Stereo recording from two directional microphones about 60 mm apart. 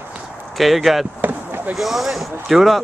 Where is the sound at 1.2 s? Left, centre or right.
Right.